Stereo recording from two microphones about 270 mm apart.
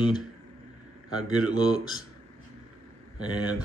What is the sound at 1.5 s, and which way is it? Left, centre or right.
Speech, centre.